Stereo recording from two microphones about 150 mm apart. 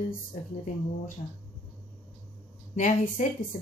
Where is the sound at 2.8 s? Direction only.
60° left (ahead or behind).